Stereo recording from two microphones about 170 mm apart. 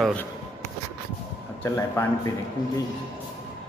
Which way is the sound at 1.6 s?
15° left (ahead or behind).